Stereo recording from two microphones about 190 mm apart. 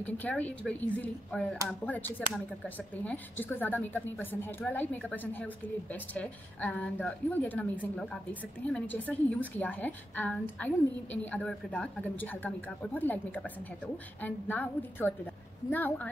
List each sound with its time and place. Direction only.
0.0 s a woman's voice: 10° left (ahead or behind)